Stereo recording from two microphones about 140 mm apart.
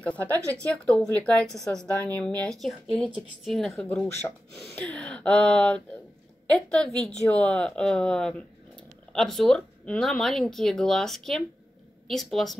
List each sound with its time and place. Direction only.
0.0 s a woman's voice: 10° left (ahead or behind)